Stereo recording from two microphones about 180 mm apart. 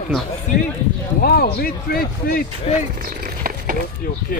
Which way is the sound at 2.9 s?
55° right (ahead or behind).